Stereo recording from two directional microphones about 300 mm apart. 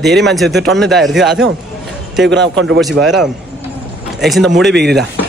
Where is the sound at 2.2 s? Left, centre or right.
Right.